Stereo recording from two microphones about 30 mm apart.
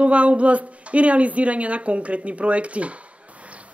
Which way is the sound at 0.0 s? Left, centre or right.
Right.